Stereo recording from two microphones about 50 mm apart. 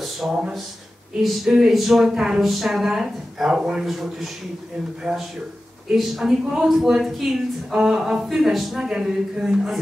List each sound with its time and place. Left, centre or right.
0.2 s speech: right
1.2 s a woman's voice: centre